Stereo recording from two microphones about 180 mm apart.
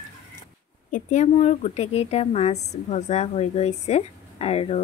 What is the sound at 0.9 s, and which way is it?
Speech, 45° left (ahead or behind).